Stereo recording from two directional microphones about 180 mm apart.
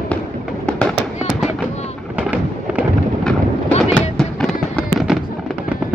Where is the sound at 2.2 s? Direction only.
10° right (ahead or behind).